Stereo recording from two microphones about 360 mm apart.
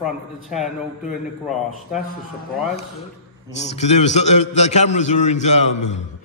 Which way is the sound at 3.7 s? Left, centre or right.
Centre.